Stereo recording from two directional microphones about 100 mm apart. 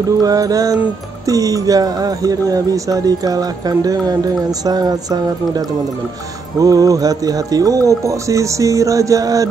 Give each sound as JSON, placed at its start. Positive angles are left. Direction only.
{"t": 0.2, "sound": "speech", "side_deg": -40}
{"t": 6.6, "sound": "speech", "side_deg": -35}